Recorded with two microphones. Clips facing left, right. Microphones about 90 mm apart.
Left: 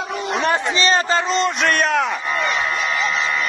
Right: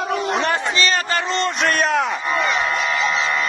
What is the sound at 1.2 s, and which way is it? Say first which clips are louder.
Speech: left 2 dB; 20° left (ahead or behind).